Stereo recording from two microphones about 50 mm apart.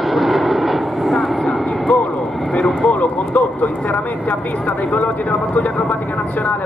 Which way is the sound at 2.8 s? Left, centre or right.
Left.